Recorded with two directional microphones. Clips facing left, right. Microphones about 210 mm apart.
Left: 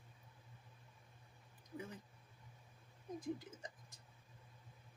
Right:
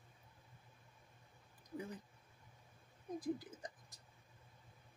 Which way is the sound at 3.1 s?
35° right (ahead or behind).